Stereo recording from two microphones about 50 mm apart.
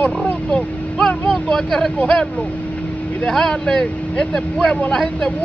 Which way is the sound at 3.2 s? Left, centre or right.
Centre.